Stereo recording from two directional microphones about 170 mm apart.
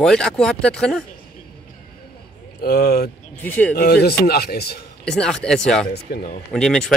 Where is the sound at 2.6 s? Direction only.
65° left (ahead or behind).